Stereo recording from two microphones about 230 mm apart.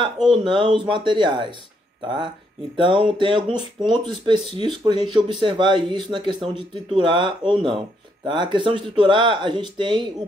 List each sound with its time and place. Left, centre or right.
0.4 s a man's voice: right